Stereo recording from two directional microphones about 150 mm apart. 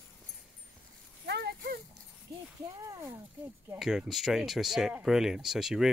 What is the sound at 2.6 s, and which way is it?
Speech, 20° right (ahead or behind).